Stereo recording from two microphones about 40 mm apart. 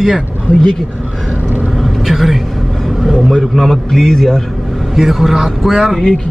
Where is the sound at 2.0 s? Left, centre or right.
Centre.